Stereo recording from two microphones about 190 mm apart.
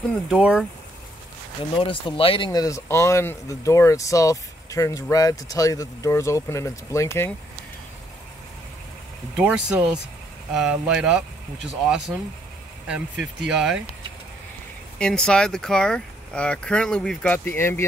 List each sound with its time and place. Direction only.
0.1 s speech: 5° right (ahead or behind)
1.8 s speech: 25° left (ahead or behind)
9.4 s speech: 5° right (ahead or behind)
15.0 s speech: 5° left (ahead or behind)